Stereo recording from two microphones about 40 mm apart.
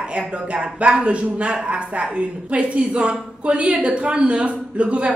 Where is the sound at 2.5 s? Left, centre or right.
Right.